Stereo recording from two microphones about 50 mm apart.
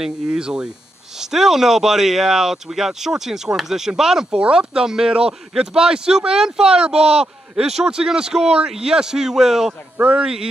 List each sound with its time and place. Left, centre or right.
0.0 s speech: centre